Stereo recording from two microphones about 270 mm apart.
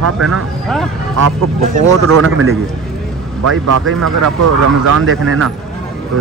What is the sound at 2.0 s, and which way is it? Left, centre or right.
A man's voice, right.